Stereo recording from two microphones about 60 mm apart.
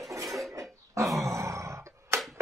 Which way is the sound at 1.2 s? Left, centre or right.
Right.